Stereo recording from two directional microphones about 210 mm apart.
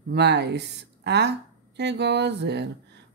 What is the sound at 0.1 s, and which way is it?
Speech, 55° right (ahead or behind).